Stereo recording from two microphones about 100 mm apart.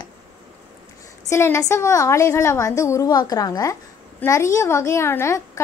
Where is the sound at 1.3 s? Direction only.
30° left (ahead or behind).